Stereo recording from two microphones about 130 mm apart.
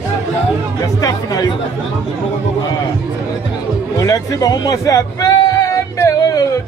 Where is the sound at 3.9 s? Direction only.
30° left (ahead or behind).